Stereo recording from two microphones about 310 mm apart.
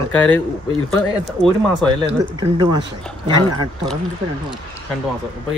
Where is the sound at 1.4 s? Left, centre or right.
Centre.